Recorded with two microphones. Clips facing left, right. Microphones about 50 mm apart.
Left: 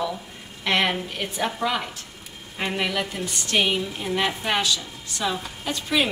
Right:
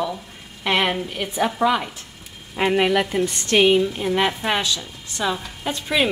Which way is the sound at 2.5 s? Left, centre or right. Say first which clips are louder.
Right 7 dB; right.